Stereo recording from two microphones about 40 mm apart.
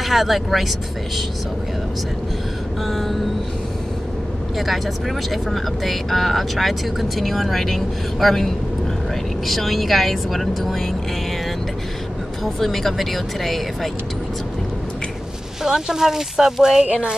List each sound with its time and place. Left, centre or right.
0.0 s speech: centre
2.8 s speech: centre
4.6 s speech: centre
9.5 s speech: centre
12.5 s speech: centre
15.6 s speech: centre
16.8 s speech: right